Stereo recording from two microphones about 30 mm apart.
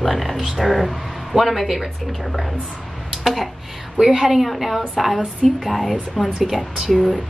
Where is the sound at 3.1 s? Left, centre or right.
Centre.